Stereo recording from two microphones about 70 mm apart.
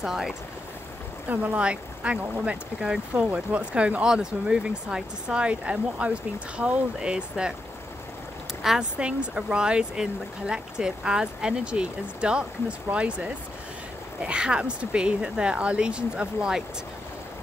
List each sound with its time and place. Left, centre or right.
0.0 s speech: centre
1.3 s speech: right
8.6 s speech: centre